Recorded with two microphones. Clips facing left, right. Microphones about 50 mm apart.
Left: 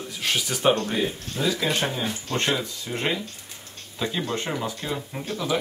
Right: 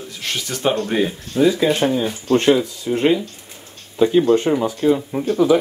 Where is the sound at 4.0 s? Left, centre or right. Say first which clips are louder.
Right 14 dB; centre.